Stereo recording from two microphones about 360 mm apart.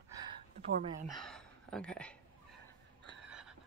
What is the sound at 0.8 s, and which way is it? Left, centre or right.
Speech, centre.